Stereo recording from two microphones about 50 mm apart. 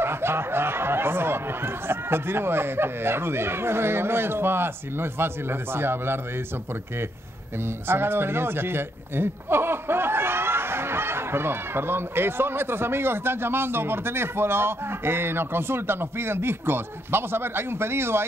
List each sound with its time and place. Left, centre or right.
0.0 s speech: right
7.6 s speech: right